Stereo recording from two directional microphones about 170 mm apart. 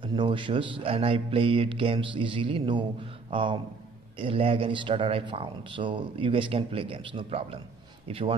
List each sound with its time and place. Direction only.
0.0 s a man's voice: 30° right (ahead or behind)